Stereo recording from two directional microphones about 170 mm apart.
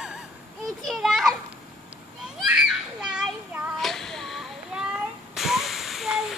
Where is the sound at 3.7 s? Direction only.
Centre (ahead or behind).